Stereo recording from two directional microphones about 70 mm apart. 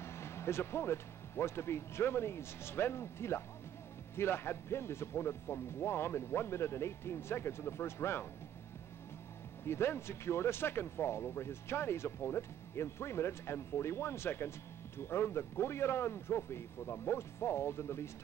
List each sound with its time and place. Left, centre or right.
0.0 s speech: left
9.7 s speech: left